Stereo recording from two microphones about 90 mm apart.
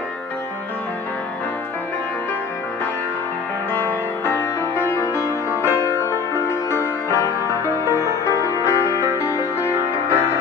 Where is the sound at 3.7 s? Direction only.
25° left (ahead or behind).